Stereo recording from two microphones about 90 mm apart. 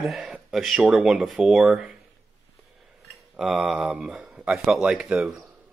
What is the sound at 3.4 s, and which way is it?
Speech, 5° right (ahead or behind).